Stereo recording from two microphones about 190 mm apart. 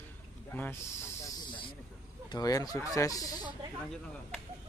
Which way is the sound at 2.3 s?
20° left (ahead or behind).